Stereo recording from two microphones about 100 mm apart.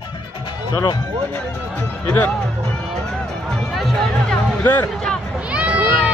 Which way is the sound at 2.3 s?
10° left (ahead or behind).